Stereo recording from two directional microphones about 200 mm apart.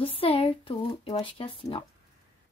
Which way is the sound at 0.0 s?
30° left (ahead or behind).